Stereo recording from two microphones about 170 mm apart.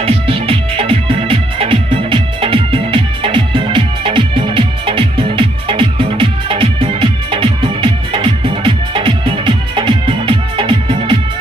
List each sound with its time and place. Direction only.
0.0 s music: 35° right (ahead or behind)